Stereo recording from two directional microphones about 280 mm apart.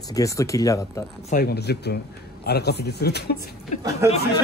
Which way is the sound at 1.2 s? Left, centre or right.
Left.